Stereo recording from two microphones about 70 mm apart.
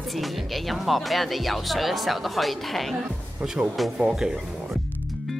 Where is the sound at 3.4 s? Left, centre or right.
Centre.